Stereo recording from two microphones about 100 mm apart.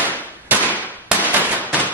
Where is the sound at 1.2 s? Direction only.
15° left (ahead or behind).